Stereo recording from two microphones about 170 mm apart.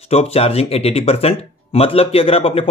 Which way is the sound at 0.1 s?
35° left (ahead or behind).